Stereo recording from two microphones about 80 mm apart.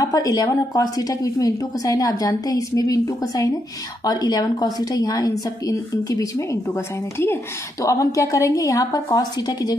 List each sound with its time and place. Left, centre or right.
0.0 s a woman's voice: left
6.7 s a woman's voice: left
7.8 s a woman's voice: left